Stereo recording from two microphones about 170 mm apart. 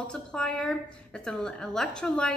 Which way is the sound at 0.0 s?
5° left (ahead or behind).